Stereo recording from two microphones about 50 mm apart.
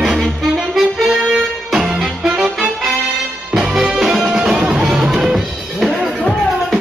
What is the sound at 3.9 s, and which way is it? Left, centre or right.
Music, centre.